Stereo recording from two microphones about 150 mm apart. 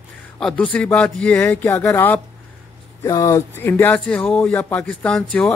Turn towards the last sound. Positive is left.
turn(degrees=10)  # may be behind; listen again after turning